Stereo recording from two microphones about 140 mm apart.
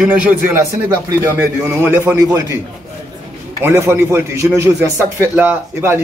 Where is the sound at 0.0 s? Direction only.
10° right (ahead or behind).